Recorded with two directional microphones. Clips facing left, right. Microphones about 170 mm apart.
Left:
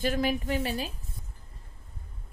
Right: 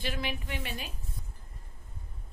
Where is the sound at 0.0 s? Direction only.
45° left (ahead or behind).